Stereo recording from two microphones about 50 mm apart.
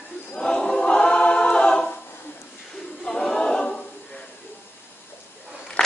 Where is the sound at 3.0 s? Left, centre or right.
Centre.